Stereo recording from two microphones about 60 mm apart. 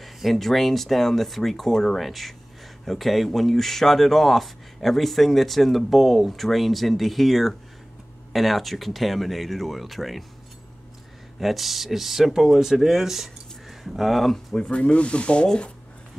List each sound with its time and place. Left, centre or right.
0.0 s speech: centre
11.3 s speech: centre
14.5 s speech: centre